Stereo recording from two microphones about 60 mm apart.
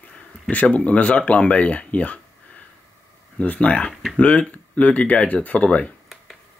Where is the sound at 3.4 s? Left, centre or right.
Left.